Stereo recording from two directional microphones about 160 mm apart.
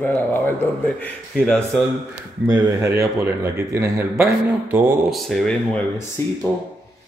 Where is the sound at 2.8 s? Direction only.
20° right (ahead or behind).